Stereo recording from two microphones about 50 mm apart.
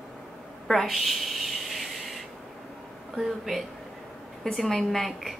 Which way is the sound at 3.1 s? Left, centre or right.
Centre.